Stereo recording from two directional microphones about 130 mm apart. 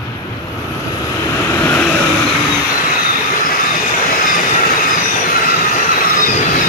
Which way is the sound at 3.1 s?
90° left.